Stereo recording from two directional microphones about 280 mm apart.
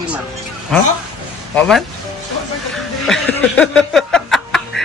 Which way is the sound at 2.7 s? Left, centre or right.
Centre.